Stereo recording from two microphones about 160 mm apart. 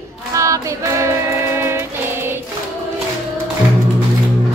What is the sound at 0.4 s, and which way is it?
Music, 20° right (ahead or behind).